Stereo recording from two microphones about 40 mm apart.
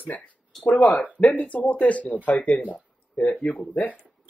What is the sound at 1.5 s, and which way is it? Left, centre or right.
Speech, left.